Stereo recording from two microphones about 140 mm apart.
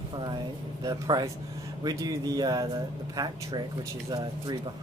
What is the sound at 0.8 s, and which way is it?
Speech, 25° right (ahead or behind).